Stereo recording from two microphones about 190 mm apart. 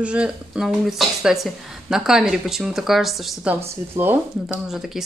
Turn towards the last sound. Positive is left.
turn(degrees=0)  # may be behind; listen again after turning